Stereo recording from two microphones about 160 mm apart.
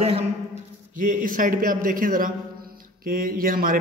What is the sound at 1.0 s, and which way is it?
A man's voice, 55° right (ahead or behind).